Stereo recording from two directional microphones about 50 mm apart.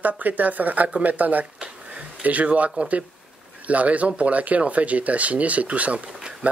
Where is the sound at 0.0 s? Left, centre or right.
Right.